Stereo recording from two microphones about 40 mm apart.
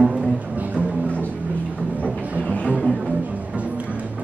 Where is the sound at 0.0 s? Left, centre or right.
Centre.